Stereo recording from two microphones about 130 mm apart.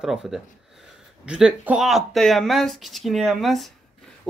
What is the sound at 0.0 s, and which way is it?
Speech, 5° right (ahead or behind).